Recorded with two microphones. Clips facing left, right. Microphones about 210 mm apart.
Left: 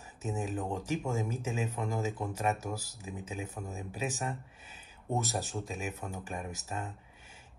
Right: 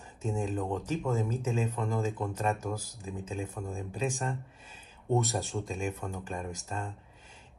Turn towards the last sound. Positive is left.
turn(degrees=5)  # may be behind; listen again after turning